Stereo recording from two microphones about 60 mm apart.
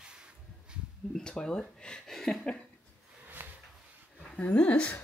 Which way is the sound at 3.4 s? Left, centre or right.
Right.